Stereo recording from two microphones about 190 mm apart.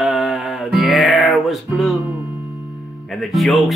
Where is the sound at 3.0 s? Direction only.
Centre (ahead or behind).